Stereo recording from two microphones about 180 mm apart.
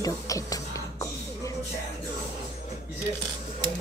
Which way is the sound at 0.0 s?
20° left (ahead or behind).